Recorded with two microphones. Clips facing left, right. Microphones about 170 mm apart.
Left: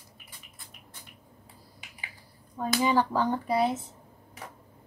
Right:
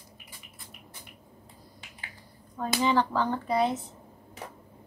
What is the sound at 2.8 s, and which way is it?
Speech, 10° left (ahead or behind).